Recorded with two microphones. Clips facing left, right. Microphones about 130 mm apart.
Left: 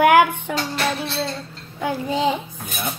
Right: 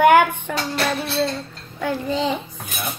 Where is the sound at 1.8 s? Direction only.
10° left (ahead or behind).